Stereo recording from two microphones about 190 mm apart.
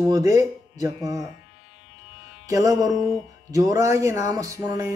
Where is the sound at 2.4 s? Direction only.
20° right (ahead or behind).